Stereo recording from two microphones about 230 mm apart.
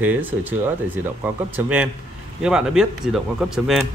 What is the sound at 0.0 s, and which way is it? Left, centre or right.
Speech, centre.